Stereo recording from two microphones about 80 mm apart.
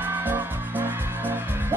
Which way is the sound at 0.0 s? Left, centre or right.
Right.